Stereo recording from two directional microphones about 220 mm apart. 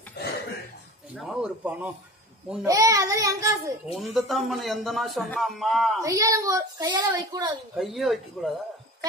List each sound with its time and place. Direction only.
1.1 s a man's voice: 5° right (ahead or behind)
3.9 s a man's voice: centre (ahead or behind)
6.0 s a child's voice: 15° right (ahead or behind)
7.7 s a man's voice: centre (ahead or behind)